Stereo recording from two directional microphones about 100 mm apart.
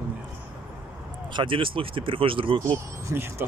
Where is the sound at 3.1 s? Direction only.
20° right (ahead or behind).